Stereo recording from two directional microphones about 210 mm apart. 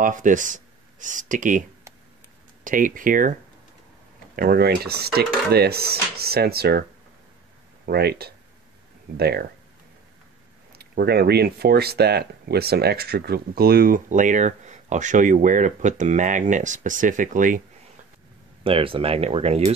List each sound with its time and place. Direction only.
0.0 s speech: 40° right (ahead or behind)
2.6 s speech: 40° right (ahead or behind)
4.4 s speech: 45° right (ahead or behind)
7.8 s speech: 50° right (ahead or behind)
10.7 s speech: 50° right (ahead or behind)
18.6 s speech: 25° right (ahead or behind)